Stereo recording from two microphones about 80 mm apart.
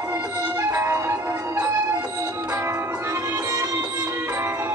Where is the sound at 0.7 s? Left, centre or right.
Right.